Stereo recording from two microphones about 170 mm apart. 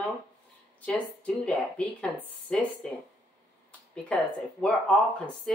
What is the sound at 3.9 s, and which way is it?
Speech, 5° left (ahead or behind).